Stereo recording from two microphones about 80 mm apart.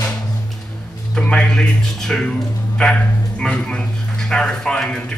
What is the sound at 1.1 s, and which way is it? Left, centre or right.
Speech, centre.